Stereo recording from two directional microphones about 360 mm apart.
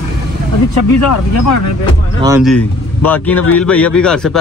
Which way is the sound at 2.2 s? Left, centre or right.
Centre.